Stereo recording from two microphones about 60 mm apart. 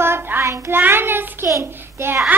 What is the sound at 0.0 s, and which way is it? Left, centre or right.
Child singing, right.